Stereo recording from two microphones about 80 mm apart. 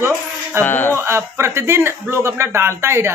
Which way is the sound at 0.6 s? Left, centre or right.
Left.